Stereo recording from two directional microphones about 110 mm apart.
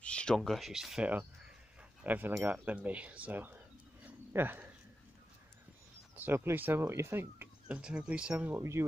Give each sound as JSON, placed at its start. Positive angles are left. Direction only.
{"t": 0.0, "sound": "speech", "side_deg": 10}
{"t": 4.0, "sound": "a sound", "side_deg": -20}
{"t": 6.1, "sound": "speech", "side_deg": -20}
{"t": 7.6, "sound": "speech", "side_deg": -10}
{"t": 8.5, "sound": "speech", "side_deg": -25}